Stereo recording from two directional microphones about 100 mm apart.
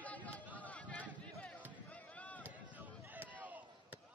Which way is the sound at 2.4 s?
15° right (ahead or behind).